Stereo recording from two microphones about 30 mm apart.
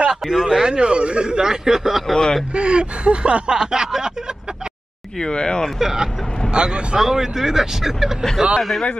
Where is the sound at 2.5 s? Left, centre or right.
Right.